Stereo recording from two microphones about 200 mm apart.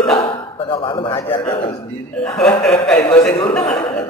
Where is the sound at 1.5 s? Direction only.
30° left (ahead or behind).